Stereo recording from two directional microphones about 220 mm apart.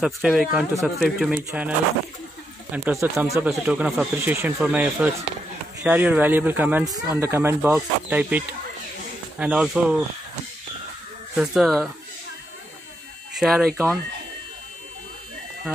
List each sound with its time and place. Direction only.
0.0 s speech: 5° right (ahead or behind)
2.7 s speech: 10° right (ahead or behind)
11.3 s speech: centre (ahead or behind)
13.4 s speech: centre (ahead or behind)